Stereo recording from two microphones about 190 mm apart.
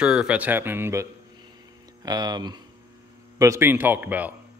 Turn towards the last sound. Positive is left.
turn(degrees=-10)  # may be behind; listen again after turning